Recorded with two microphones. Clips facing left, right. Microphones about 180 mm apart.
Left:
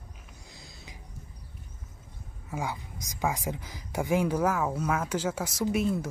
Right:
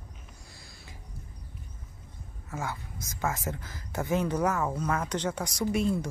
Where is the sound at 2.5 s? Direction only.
15° left (ahead or behind).